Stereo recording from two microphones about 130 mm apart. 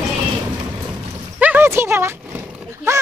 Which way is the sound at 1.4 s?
15° right (ahead or behind).